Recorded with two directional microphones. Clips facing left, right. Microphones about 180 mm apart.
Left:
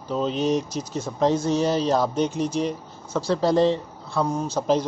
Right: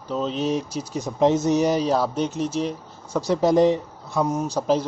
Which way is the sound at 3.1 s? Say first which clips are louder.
Right 2 dB; 20° right (ahead or behind).